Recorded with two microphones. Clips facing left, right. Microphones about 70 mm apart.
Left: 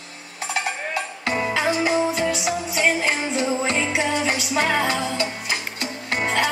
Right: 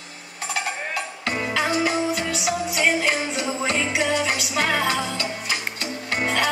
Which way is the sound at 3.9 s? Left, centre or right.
Centre.